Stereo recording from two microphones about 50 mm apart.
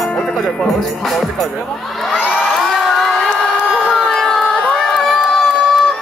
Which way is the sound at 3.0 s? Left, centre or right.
Centre.